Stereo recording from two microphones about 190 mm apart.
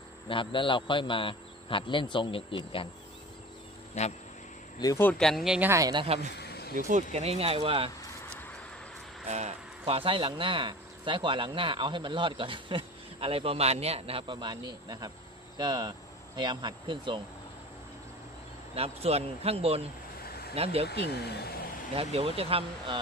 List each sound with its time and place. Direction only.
0.3 s a man's voice: 25° left (ahead or behind)
4.7 s speech: 15° left (ahead or behind); by 6.0 s 20° right (ahead or behind)
6.0 s speech: 35° right (ahead or behind)
6.3 s a sound: 55° left (ahead or behind)
6.9 s speech: 40° right (ahead or behind)
9.3 s speech: 35° right (ahead or behind)
18.8 s speech: 30° right (ahead or behind)
21.1 s speech: 60° left (ahead or behind)
21.9 s speech: 30° right (ahead or behind)